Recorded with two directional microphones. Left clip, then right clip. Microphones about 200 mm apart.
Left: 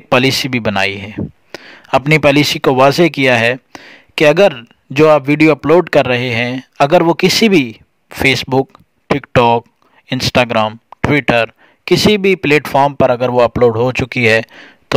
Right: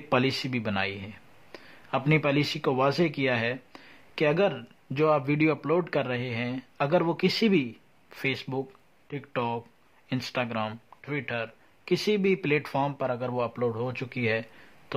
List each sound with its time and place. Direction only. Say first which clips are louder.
0.1 s speech: left 14 dB; 50° left (ahead or behind)